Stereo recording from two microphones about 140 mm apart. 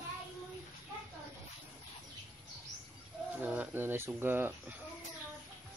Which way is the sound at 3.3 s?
10° right (ahead or behind).